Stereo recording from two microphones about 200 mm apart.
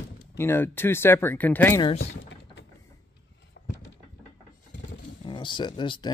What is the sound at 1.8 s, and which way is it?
Speech, 25° left (ahead or behind).